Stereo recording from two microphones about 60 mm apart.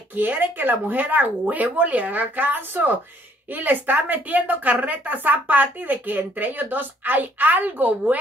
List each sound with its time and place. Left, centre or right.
0.1 s a woman's voice: right